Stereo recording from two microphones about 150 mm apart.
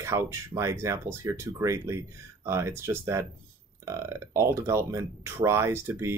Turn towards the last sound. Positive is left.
turn(degrees=-15)  # may be behind; listen again after turning